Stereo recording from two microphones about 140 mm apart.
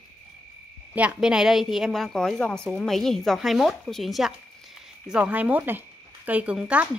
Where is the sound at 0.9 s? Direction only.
5° right (ahead or behind).